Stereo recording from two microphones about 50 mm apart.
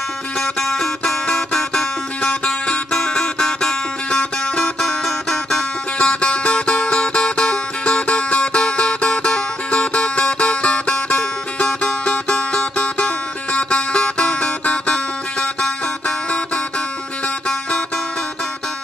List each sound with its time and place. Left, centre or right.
0.4 s music: centre
5.9 s music: centre
17.5 s music: centre